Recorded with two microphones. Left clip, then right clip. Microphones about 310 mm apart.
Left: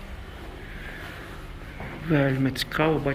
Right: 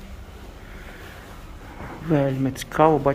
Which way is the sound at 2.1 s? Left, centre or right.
Centre.